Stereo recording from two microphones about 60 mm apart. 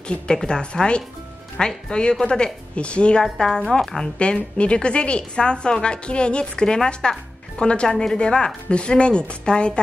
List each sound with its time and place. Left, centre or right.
0.4 s a woman's voice: centre